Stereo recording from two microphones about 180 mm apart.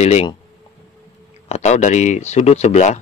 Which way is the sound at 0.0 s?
35° left (ahead or behind).